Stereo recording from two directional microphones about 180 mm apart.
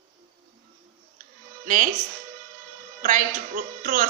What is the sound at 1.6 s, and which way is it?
Speech, 50° right (ahead or behind).